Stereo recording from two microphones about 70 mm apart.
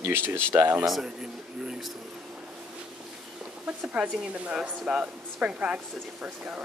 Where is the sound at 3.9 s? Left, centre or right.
Centre.